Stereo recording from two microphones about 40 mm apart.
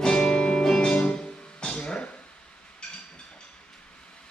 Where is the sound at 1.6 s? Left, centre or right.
Left.